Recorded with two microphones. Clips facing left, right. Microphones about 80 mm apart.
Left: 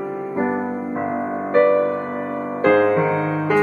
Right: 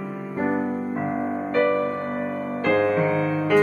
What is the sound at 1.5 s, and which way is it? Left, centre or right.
Music, left.